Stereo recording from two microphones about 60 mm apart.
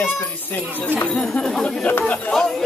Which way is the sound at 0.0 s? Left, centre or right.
Left.